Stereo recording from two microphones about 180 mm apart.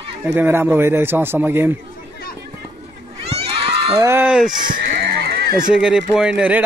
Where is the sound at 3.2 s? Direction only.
35° right (ahead or behind).